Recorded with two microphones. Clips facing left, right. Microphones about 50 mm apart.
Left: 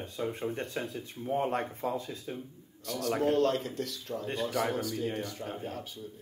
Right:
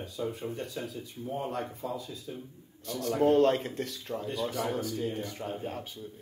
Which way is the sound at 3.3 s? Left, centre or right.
Right.